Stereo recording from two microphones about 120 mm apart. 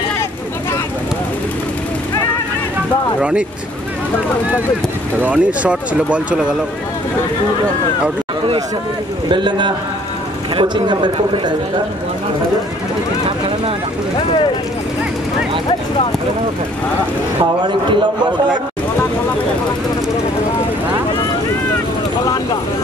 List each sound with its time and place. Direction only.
3.2 s speech: 10° right (ahead or behind)
5.2 s speech: 10° right (ahead or behind)
9.3 s a man's voice: 40° right (ahead or behind)
22.2 s vehicle: 30° left (ahead or behind)